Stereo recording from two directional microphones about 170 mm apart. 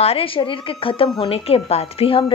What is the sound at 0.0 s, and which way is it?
A woman's voice, 35° left (ahead or behind).